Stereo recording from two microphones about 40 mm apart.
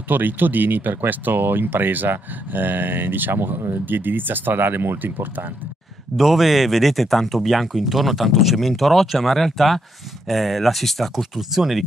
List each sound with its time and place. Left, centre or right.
0.1 s speech: right
6.1 s speech: centre
11.5 s speech: centre